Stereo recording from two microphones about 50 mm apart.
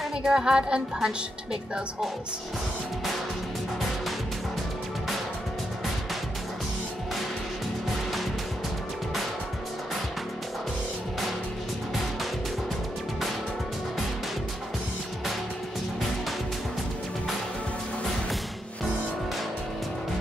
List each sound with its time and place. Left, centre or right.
0.2 s speech: centre